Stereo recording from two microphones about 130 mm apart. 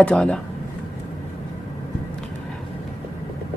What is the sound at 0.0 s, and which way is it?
Speech, 10° left (ahead or behind).